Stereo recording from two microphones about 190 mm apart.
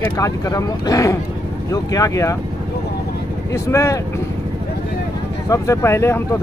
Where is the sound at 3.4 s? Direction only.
15° left (ahead or behind).